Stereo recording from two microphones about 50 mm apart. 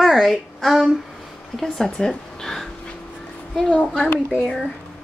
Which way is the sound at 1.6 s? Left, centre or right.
Centre.